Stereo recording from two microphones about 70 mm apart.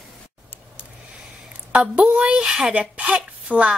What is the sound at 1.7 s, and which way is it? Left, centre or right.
A woman's voice, centre.